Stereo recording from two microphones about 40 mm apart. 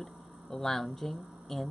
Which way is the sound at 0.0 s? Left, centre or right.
Centre.